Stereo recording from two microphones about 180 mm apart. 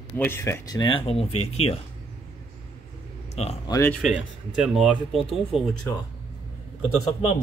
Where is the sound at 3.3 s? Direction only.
35° left (ahead or behind).